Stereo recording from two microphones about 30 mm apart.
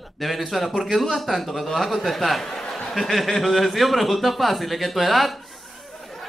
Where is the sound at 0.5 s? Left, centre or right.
Centre.